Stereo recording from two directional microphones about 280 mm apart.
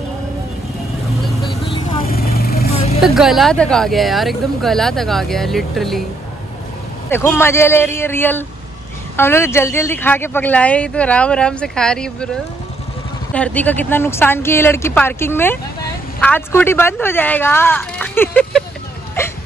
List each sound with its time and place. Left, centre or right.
1.7 s vehicle: centre
2.0 s vehicle: left
3.0 s speech: centre
7.1 s speech: centre
13.3 s speech: centre